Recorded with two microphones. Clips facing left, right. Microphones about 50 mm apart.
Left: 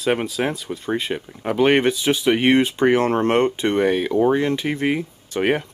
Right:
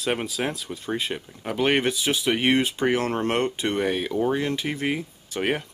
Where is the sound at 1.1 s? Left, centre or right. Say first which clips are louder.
Left 5 dB; centre.